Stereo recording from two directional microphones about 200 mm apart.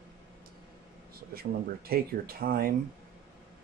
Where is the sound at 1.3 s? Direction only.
50° right (ahead or behind).